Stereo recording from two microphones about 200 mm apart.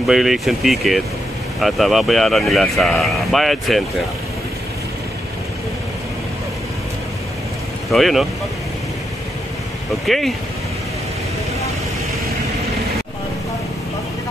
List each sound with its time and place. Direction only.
0.0 s speech: centre (ahead or behind)
7.9 s speech: centre (ahead or behind)
10.0 s speech: centre (ahead or behind)